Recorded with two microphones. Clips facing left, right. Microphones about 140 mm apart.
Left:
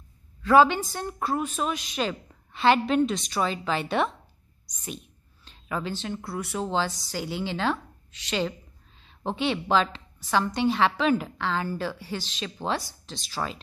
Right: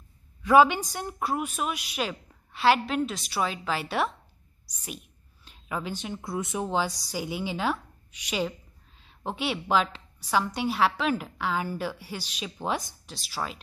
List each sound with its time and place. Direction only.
0.4 s a woman's voice: 15° right (ahead or behind)